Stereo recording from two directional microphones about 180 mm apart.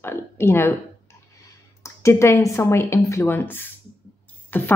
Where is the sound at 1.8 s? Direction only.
15° left (ahead or behind).